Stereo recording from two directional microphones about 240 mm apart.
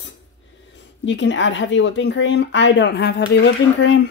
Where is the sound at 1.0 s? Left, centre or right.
Left.